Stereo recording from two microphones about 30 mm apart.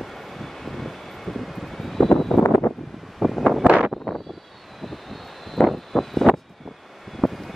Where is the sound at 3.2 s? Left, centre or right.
Centre.